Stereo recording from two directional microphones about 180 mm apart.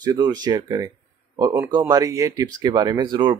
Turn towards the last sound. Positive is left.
turn(degrees=-25)  # may be behind; listen again after turning